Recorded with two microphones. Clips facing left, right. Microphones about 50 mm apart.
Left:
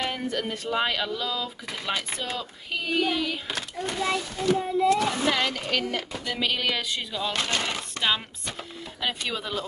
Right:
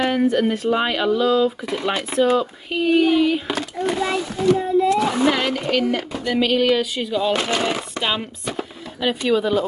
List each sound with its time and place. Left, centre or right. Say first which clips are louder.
0.1 s speech: right 11 dB; centre
2.0 s speech: right 15 dB; centre
2.3 s speech: right 12 dB; centre